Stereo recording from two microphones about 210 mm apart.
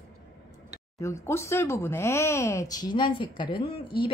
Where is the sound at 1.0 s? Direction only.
15° left (ahead or behind).